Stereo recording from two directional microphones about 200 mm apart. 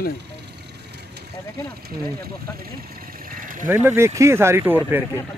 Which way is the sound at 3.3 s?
45° right (ahead or behind).